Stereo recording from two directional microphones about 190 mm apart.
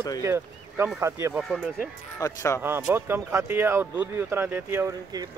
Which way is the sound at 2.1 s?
15° left (ahead or behind).